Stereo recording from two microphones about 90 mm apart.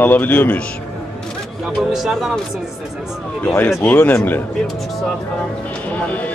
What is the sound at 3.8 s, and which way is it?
Speech, 20° left (ahead or behind).